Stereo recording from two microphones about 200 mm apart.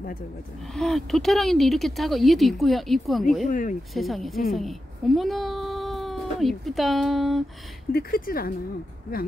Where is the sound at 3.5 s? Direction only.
40° left (ahead or behind).